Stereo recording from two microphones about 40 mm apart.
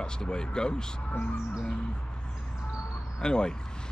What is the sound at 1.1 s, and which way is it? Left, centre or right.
Music, left.